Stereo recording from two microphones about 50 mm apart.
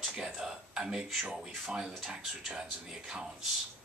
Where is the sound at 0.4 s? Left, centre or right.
Centre.